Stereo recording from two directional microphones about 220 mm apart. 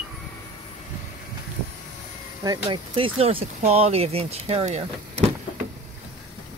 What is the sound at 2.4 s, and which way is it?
Speech, 20° right (ahead or behind).